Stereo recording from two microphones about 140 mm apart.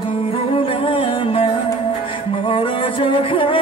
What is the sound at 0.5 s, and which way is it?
Music, 40° left (ahead or behind).